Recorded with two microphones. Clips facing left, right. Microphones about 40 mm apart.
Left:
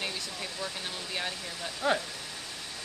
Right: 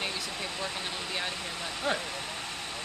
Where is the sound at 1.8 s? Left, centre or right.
Right.